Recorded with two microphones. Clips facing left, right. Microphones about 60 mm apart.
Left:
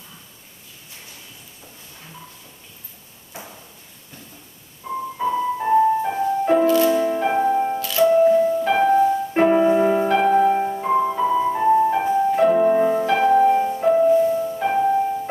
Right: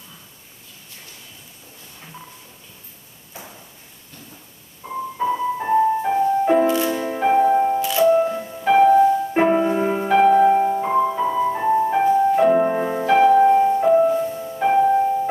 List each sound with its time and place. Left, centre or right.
5.1 s music: centre
6.6 s music: centre
8.1 s music: centre
8.4 s music: centre
8.6 s music: centre
14.2 s music: centre
14.6 s music: centre